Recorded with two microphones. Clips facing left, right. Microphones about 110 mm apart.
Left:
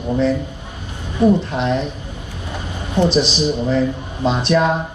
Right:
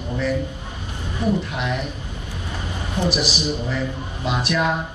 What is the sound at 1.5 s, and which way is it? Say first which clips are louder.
Speech: left 6 dB; 30° left (ahead or behind).